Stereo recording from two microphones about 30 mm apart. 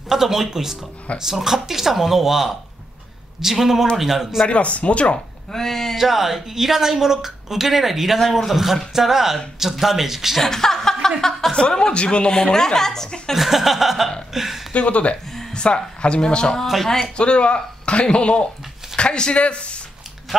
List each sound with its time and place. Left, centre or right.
0.1 s a woman's voice: centre
4.5 s speech: left
5.5 s speech: centre
5.9 s a woman's voice: centre
10.4 s chuckle: centre
11.5 s speech: left
12.3 s a woman's voice: left
13.3 s a woman's voice: centre
14.3 s a sound: centre
14.7 s speech: left
15.5 s speech: left